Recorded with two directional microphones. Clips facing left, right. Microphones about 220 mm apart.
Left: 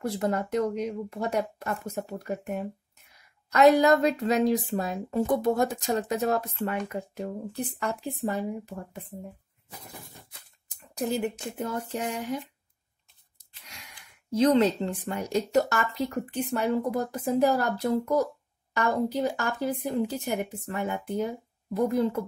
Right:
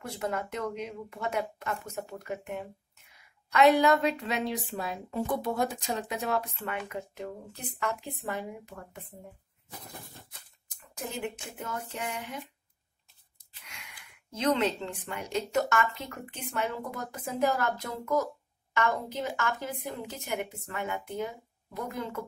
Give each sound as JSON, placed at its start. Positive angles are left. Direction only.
{"t": 0.0, "sound": "a woman's voice", "side_deg": 35}
{"t": 11.0, "sound": "speech", "side_deg": 35}
{"t": 13.7, "sound": "speech", "side_deg": 35}